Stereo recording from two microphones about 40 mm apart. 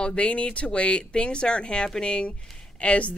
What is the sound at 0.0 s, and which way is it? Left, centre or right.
Speech, left.